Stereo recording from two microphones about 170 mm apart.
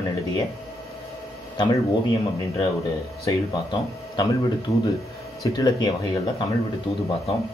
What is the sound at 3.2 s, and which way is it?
Speech, 20° left (ahead or behind).